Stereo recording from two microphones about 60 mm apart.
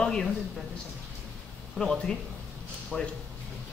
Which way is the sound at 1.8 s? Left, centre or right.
Centre.